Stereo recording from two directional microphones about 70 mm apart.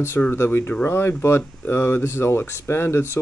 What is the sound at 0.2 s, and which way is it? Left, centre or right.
Speech, left.